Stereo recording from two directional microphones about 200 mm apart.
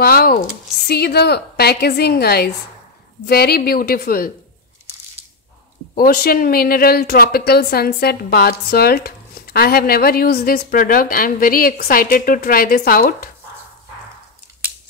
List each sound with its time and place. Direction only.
0.0 s a woman's voice: 50° left (ahead or behind)
5.9 s a woman's voice: 50° left (ahead or behind)